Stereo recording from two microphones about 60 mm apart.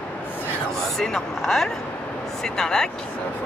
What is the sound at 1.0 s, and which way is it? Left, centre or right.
Speech, centre.